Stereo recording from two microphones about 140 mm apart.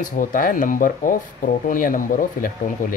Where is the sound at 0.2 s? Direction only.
75° left (ahead or behind).